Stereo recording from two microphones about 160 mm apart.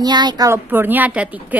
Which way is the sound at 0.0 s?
25° right (ahead or behind).